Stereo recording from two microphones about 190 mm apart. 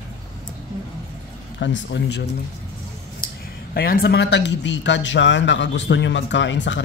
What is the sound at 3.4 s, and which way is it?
Speech, 50° left (ahead or behind).